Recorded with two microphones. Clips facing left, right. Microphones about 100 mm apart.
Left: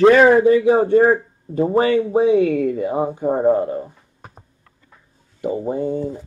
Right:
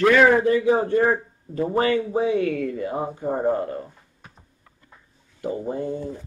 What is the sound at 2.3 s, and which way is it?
A man's voice, 15° left (ahead or behind).